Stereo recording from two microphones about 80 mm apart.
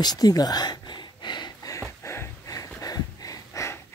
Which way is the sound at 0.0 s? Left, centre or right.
Left.